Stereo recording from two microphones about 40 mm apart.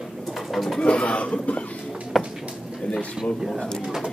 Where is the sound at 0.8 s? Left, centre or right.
Left.